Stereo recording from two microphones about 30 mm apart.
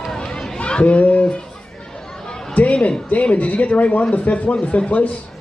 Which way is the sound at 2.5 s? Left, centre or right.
Left.